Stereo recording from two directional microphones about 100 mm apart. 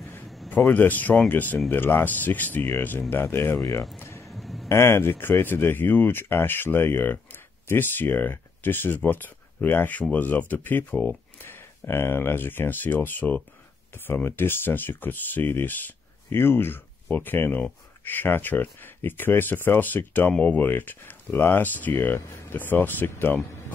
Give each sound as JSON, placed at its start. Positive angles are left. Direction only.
{"t": 0.6, "sound": "speech", "side_deg": 15}
{"t": 4.0, "sound": "music", "side_deg": 25}
{"t": 4.3, "sound": "a sound", "side_deg": 0}
{"t": 4.6, "sound": "speech", "side_deg": 25}